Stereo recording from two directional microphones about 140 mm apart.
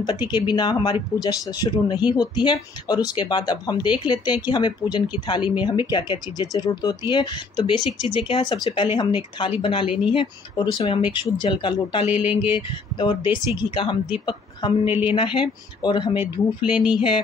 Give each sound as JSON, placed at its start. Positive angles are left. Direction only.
{"t": 0.0, "sound": "speech", "side_deg": 30}
{"t": 14.9, "sound": "speech", "side_deg": -10}
{"t": 15.1, "sound": "speech", "side_deg": 35}
{"t": 16.2, "sound": "speech", "side_deg": -5}
{"t": 16.9, "sound": "speech", "side_deg": 35}